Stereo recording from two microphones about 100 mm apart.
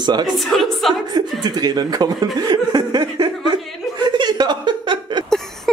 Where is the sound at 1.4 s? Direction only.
45° right (ahead or behind).